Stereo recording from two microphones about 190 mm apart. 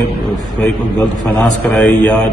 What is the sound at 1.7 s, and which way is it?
Speech, 5° left (ahead or behind).